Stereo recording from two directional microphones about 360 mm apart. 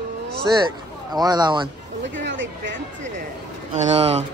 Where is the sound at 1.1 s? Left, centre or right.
Centre.